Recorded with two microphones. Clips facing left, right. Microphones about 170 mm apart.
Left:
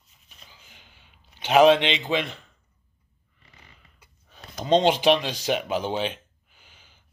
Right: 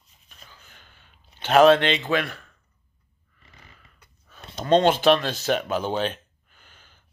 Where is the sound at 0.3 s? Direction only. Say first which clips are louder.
Right 2 dB; 10° left (ahead or behind).